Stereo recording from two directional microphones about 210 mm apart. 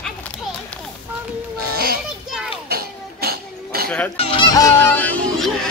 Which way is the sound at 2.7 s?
45° right (ahead or behind).